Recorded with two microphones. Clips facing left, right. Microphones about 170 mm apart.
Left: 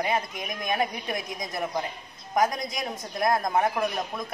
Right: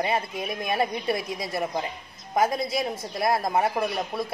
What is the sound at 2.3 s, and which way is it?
Speech, 30° right (ahead or behind).